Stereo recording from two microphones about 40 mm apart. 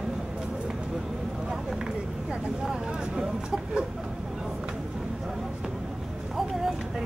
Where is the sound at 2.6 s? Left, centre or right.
Centre.